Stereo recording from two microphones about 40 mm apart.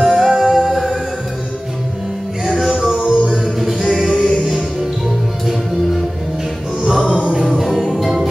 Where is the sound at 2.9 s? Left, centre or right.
Right.